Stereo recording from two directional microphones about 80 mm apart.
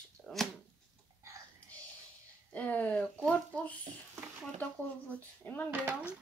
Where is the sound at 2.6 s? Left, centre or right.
Centre.